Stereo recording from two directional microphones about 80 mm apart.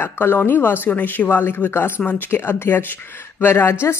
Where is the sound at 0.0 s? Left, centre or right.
Left.